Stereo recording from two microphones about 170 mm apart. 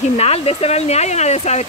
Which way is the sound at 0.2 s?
35° left (ahead or behind).